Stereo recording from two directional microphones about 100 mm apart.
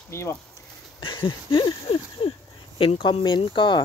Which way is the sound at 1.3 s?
50° left (ahead or behind).